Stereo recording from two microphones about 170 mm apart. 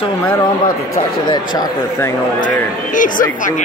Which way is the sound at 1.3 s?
25° left (ahead or behind).